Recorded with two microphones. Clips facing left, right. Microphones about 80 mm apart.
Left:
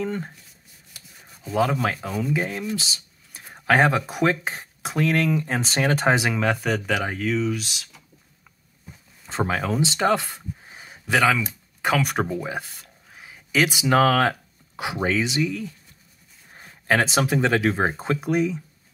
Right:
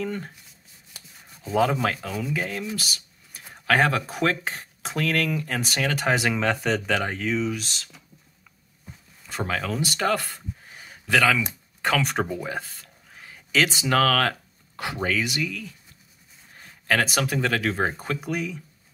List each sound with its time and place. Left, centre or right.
0.0 s a sound: centre
1.3 s speech: centre
2.3 s speech: centre
2.7 s a sound: left
3.5 s speech: centre
6.3 s speech: centre
9.3 s speech: left